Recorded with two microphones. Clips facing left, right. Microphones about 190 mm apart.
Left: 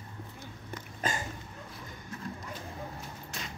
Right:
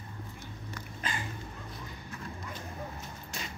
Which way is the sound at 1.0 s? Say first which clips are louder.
Left 4 dB; 45° left (ahead or behind).